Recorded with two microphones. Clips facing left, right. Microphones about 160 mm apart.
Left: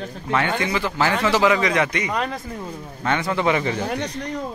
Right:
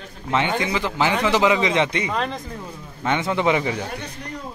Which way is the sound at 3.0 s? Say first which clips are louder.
Even; 20° right (ahead or behind).